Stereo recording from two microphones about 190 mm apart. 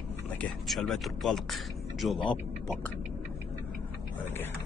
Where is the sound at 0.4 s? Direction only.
Centre (ahead or behind).